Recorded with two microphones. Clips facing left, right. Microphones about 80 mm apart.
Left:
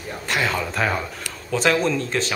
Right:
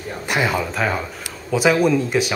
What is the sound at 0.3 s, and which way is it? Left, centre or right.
Speech, centre.